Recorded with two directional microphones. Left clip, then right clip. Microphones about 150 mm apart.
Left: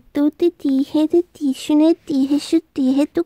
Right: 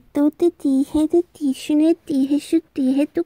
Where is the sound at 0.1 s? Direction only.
Centre (ahead or behind).